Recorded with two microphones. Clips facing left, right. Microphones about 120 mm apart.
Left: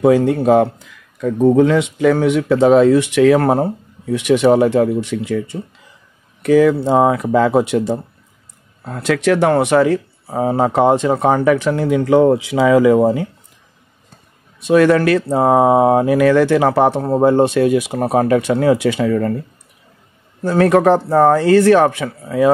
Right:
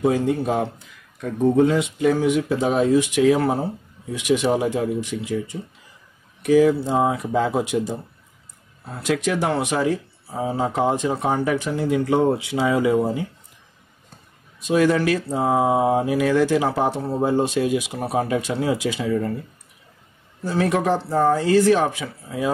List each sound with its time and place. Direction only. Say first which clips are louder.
0.0 s speech: left 7 dB; 75° left (ahead or behind)
1.6 s speech: left 5 dB; 90° left
14.7 s speech: left 7 dB; 65° left (ahead or behind)
20.4 s speech: left 9 dB; 60° left (ahead or behind)